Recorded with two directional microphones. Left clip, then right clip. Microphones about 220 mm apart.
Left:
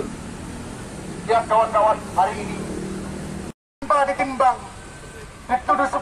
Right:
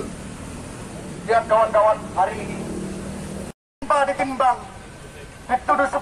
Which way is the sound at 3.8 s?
Centre (ahead or behind).